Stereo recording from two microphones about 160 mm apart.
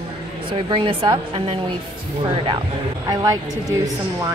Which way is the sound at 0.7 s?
30° right (ahead or behind).